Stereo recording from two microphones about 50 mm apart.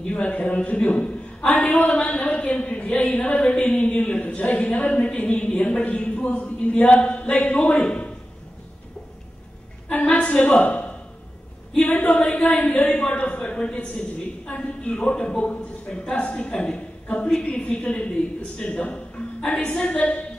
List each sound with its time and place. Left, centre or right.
0.0 s a woman's voice: left
9.8 s a sound: left
12.0 s a woman's voice: left